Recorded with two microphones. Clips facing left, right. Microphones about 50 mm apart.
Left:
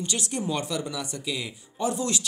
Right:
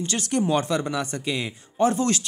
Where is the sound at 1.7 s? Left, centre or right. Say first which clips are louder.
Right 6 dB; right.